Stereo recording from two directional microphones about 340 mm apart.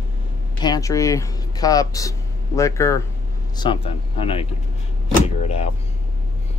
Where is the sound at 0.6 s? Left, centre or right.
Centre.